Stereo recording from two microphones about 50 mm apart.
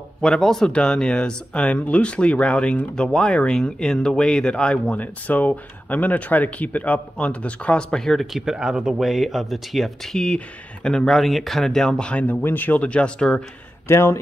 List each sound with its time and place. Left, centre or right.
0.2 s speech: centre
4.9 s speech: left
7.9 s speech: centre
8.3 s speech: centre
9.0 s speech: centre
10.1 s speech: centre
11.1 s speech: centre; by 12.3 s left
12.4 s speech: left
12.8 s speech: left
13.8 s speech: left